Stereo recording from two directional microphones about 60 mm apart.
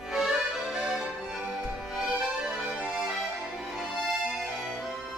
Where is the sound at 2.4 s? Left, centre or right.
Centre.